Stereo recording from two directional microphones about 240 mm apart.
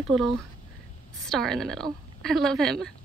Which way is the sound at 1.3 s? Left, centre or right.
Centre.